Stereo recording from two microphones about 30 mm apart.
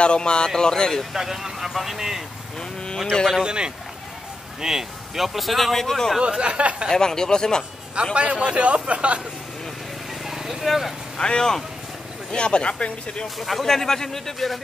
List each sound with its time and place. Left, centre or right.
0.0 s speech: left
1.1 s speech: centre
3.4 s a man's voice: right
4.6 s speech: centre
5.8 s a man's voice: centre
6.4 s a man's voice: right
7.0 s speech: left
7.9 s a man's voice: right
10.2 s vehicle: centre
10.6 s speech: centre
11.1 s speech: left
13.4 s speech: centre
13.7 s a man's voice: centre